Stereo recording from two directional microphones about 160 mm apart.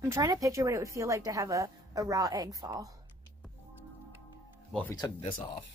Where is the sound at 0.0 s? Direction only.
20° right (ahead or behind).